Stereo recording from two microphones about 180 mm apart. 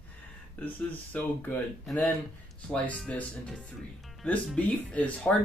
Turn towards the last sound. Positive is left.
turn(degrees=5)  # may be behind; listen again after turning